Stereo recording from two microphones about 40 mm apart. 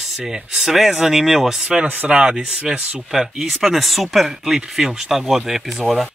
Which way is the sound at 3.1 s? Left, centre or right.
Centre.